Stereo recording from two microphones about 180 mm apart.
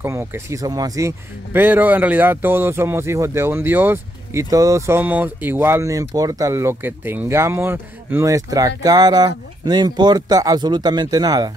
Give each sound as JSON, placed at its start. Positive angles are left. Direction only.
{"t": 0.0, "sound": "speech", "side_deg": -15}